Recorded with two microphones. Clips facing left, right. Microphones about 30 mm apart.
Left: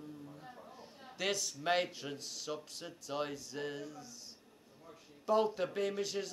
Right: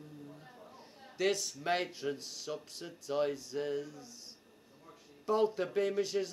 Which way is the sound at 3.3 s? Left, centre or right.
Centre.